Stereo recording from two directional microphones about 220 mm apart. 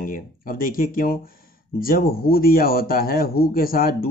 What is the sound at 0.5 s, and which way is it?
Speech, 40° left (ahead or behind).